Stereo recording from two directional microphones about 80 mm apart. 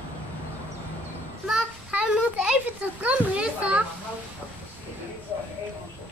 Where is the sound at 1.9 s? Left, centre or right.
Centre.